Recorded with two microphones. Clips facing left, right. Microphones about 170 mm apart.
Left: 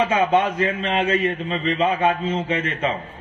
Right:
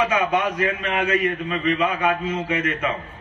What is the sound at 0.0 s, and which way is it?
A man's voice, 30° left (ahead or behind).